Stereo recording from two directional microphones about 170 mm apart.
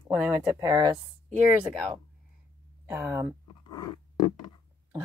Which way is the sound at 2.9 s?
15° right (ahead or behind).